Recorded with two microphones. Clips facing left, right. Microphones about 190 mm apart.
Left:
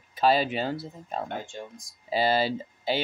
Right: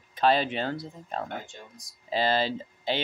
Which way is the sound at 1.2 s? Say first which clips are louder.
Left 3 dB; 25° left (ahead or behind).